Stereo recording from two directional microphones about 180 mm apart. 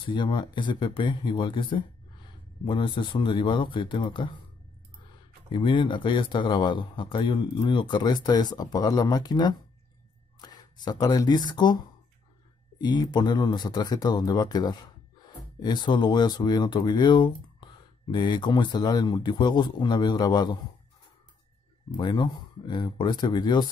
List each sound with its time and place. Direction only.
0.0 s speech: 25° left (ahead or behind)
5.5 s speech: 30° left (ahead or behind)
21.9 s speech: 25° left (ahead or behind)